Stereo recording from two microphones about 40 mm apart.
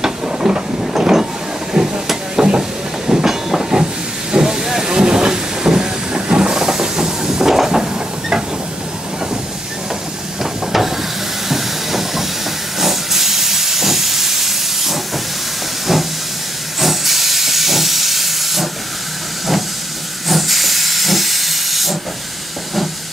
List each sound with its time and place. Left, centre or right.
0.0 s vehicle: centre
1.7 s stir: centre
3.1 s train: centre
3.7 s steam: centre
10.4 s hiss: centre
12.8 s steam: centre
16.8 s hiss: centre
20.2 s hiss: centre